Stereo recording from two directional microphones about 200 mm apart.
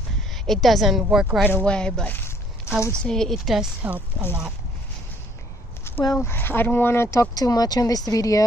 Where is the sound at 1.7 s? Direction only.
5° left (ahead or behind).